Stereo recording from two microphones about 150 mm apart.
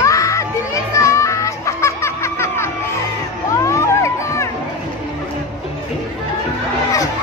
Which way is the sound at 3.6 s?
20° left (ahead or behind).